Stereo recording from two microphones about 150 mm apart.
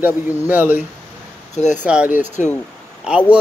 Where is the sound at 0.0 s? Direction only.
10° right (ahead or behind).